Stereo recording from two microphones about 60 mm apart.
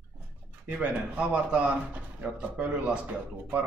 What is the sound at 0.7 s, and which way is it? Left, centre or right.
Speech, right.